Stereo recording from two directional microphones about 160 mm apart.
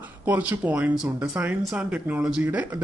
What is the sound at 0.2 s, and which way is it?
Speech, 10° right (ahead or behind).